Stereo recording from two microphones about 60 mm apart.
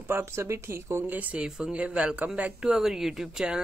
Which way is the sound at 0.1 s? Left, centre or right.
Right.